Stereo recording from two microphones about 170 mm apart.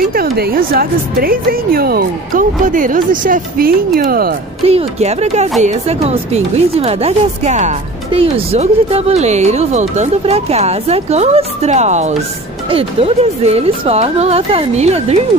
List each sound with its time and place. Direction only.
0.1 s speech: 60° right (ahead or behind)
4.6 s speech: 40° right (ahead or behind)